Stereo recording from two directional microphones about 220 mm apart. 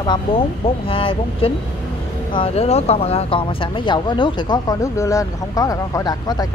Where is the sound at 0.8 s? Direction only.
25° left (ahead or behind).